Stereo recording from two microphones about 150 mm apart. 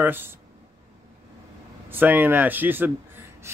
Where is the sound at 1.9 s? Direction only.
10° right (ahead or behind).